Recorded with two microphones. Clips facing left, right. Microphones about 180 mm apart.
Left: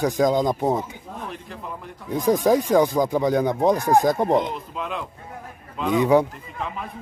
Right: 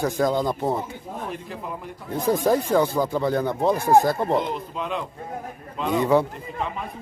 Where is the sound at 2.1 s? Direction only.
15° left (ahead or behind).